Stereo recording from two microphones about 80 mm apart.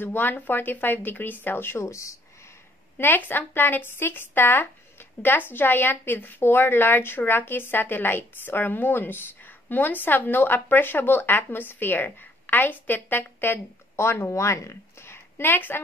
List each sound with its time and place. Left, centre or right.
0.0 s speech: left
3.0 s speech: left